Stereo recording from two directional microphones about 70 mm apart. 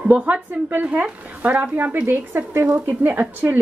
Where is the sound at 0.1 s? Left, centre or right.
Right.